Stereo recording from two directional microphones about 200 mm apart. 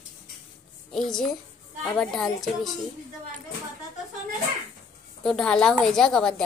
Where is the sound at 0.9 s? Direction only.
5° left (ahead or behind).